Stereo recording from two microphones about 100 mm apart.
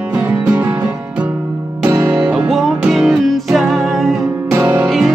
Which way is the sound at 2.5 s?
Centre (ahead or behind).